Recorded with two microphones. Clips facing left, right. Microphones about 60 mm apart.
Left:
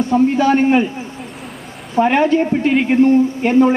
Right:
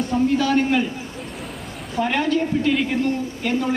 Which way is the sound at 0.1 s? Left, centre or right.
Left.